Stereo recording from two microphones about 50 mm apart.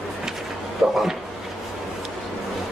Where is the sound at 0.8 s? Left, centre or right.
Centre.